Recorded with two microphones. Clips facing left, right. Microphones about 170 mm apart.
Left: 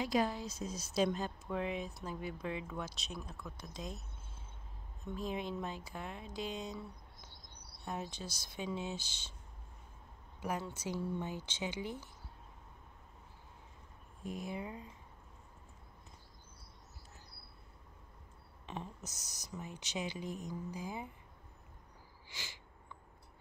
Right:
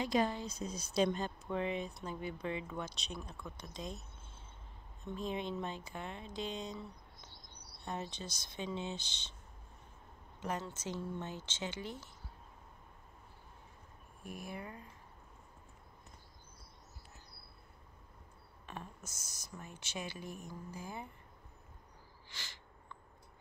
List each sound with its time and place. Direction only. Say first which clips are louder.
0.0 s speech: even; 5° left (ahead or behind)
5.0 s speech: even; 5° left (ahead or behind)
10.4 s speech: left 1 dB; 10° left (ahead or behind)
14.2 s speech: left 4 dB; 20° left (ahead or behind)
18.7 s speech: left 3 dB; 20° left (ahead or behind)
22.3 s a sound: left 2 dB; 15° left (ahead or behind)